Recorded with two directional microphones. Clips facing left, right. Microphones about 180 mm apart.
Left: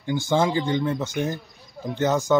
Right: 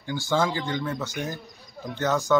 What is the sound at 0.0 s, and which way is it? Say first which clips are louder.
A man's voice: left 3 dB; 20° left (ahead or behind).